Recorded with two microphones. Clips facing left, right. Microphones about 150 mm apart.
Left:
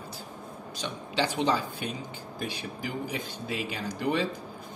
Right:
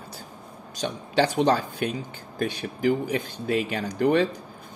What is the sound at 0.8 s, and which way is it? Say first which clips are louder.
Speech: right 7 dB; 50° right (ahead or behind).